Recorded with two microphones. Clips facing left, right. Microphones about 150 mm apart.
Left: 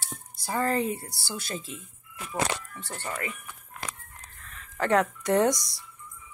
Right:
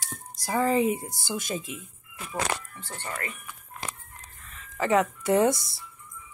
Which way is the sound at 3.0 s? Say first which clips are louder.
Left 1 dB; 15° left (ahead or behind).